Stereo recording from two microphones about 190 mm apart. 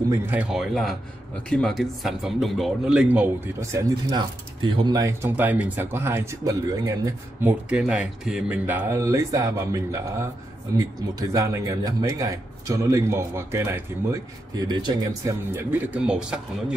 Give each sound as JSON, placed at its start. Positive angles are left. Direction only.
{"t": 0.1, "sound": "speech", "side_deg": -10}
{"t": 3.7, "sound": "a man's voice", "side_deg": -25}
{"t": 7.7, "sound": "a man's voice", "side_deg": -5}